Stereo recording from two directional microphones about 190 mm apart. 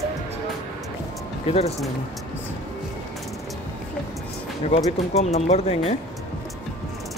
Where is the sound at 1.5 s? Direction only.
30° left (ahead or behind).